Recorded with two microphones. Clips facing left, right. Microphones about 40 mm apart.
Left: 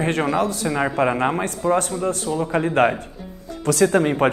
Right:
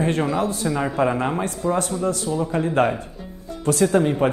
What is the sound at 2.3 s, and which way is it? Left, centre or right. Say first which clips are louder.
Speech: left 3 dB; left.